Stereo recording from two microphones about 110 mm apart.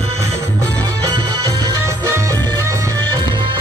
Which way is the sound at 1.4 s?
30° right (ahead or behind).